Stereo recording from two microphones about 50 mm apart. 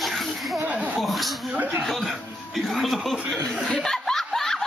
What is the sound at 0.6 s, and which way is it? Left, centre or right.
Chuckle, right.